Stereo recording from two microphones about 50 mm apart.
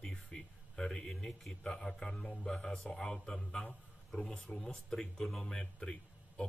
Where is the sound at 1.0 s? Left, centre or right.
Centre.